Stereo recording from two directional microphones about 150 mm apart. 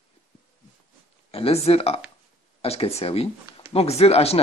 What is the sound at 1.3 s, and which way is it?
Speech, 40° left (ahead or behind).